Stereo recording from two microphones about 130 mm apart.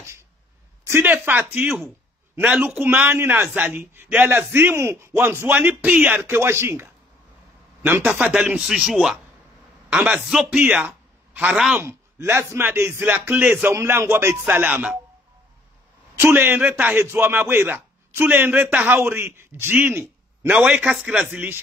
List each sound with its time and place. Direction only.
0.8 s a man's voice: 15° right (ahead or behind)
16.2 s a man's voice: 15° right (ahead or behind)